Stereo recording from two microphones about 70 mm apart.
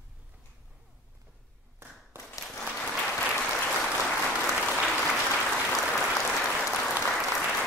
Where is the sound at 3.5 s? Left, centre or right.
Centre.